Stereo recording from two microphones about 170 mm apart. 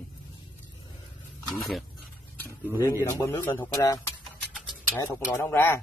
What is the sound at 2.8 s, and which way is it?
Speech, 20° left (ahead or behind).